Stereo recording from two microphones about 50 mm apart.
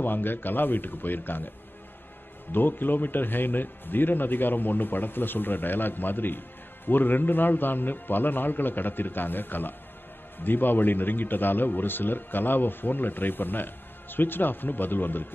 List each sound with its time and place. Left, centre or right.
0.0 s a man's voice: left
2.5 s a man's voice: left